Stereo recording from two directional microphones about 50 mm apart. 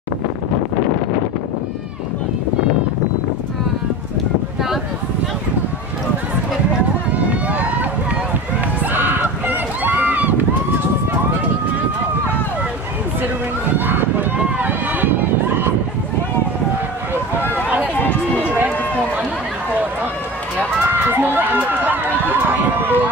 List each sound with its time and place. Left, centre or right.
7.1 s run: right
8.9 s a sound: right
13.7 s run: right
14.6 s a sound: right
18.4 s run: right
20.9 s run: right